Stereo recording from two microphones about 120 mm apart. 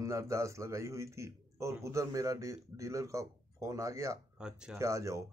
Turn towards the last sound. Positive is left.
turn(degrees=-25)  # may be behind; listen again after turning